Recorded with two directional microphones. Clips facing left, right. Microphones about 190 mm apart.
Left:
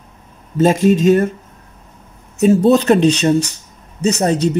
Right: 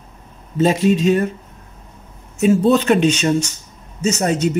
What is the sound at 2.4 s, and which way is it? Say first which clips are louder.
Speech: left 3 dB; 40° left (ahead or behind).